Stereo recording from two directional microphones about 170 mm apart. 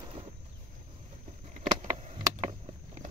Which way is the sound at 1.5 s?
45° right (ahead or behind).